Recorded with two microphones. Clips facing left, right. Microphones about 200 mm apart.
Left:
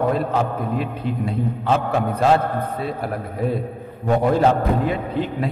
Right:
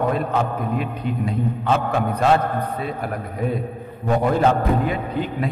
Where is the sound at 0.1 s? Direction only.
30° left (ahead or behind).